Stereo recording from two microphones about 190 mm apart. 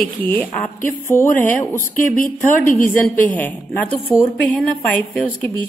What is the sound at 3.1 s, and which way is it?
Speech, 10° left (ahead or behind).